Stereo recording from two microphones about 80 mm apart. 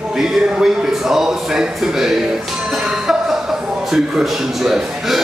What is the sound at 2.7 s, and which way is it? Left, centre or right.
Music, centre.